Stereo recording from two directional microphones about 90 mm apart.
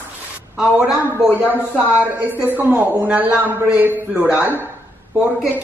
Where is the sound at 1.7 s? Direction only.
20° right (ahead or behind).